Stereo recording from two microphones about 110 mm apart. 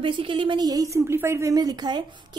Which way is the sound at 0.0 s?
50° right (ahead or behind).